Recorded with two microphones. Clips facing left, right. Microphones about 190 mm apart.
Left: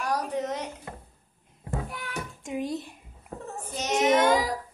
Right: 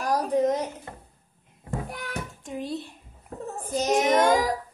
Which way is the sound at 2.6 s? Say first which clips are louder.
Even; 45° left (ahead or behind).